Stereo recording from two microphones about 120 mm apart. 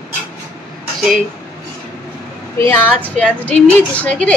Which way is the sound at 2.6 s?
20° left (ahead or behind).